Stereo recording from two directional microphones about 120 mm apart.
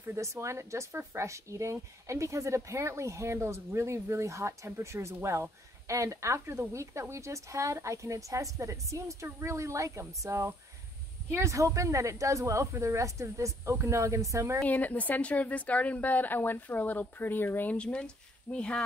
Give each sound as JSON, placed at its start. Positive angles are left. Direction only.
{"t": 0.0, "sound": "speech", "side_deg": -25}
{"t": 14.6, "sound": "a woman's voice", "side_deg": 15}